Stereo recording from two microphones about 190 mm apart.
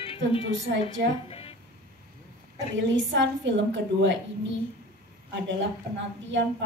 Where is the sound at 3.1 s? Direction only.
70° right (ahead or behind).